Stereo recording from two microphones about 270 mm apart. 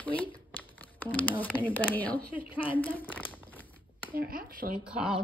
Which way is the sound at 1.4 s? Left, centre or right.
Centre.